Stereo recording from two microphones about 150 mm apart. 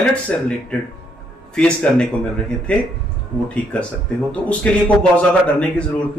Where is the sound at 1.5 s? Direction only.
5° left (ahead or behind).